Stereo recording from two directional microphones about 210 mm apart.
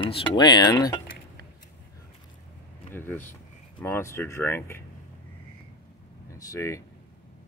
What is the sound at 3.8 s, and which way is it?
Speech, 10° left (ahead or behind).